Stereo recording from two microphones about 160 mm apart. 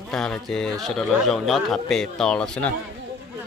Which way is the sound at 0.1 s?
5° left (ahead or behind).